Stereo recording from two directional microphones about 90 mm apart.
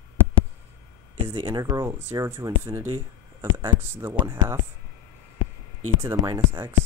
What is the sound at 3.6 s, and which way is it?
Speech, 25° right (ahead or behind).